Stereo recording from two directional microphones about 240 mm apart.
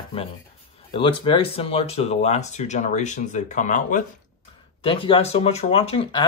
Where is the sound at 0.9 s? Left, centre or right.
Left.